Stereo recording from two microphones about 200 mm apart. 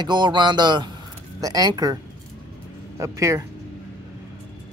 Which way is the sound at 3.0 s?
15° right (ahead or behind).